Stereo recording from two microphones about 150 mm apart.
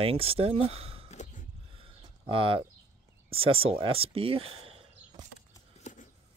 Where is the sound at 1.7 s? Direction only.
35° right (ahead or behind).